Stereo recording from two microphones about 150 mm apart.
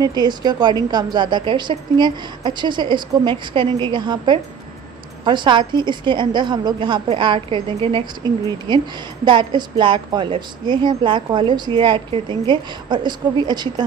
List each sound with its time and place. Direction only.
0.0 s a woman's voice: 30° right (ahead or behind)